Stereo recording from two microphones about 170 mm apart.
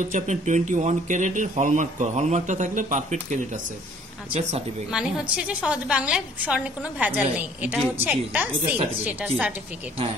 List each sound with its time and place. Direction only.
0.1 s speech: 45° right (ahead or behind)
4.9 s a woman's voice: 5° right (ahead or behind)
8.5 s speech: 35° right (ahead or behind)